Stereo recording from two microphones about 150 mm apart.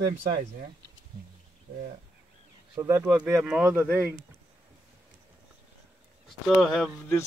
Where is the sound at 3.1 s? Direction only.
5° right (ahead or behind).